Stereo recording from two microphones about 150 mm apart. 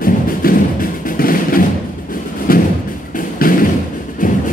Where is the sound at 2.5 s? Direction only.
75° left (ahead or behind).